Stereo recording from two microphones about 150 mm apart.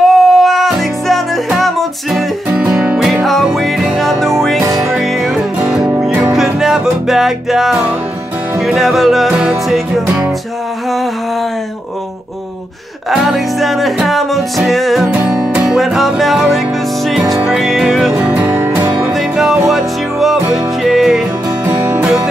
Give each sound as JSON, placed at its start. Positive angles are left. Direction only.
{"t": 0.0, "sound": "music", "side_deg": 0}
{"t": 4.6, "sound": "music", "side_deg": -20}
{"t": 4.9, "sound": "music", "side_deg": 0}
{"t": 13.1, "sound": "music", "side_deg": 0}